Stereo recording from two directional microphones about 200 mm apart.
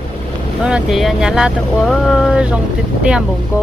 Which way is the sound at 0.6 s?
5° right (ahead or behind).